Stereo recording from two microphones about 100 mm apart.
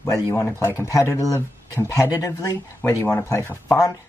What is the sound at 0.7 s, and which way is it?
Speech, 35° left (ahead or behind).